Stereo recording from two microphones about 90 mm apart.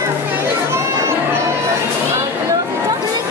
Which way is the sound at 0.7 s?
30° right (ahead or behind).